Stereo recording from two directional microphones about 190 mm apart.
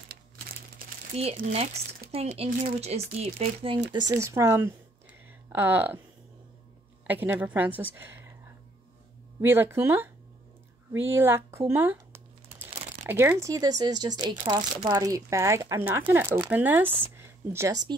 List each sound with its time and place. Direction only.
1.1 s speech: 30° right (ahead or behind)
4.1 s speech: 15° right (ahead or behind)
7.1 s speech: 10° right (ahead or behind)
9.4 s speech: 10° right (ahead or behind)